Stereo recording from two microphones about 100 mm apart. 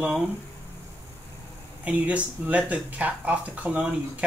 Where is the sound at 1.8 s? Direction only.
15° right (ahead or behind).